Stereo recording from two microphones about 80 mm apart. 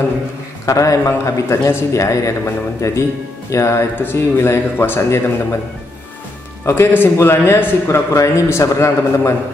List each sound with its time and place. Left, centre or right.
0.7 s a man's voice: left
6.6 s a man's voice: left